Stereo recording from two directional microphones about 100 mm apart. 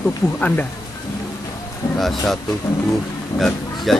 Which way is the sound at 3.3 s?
35° left (ahead or behind).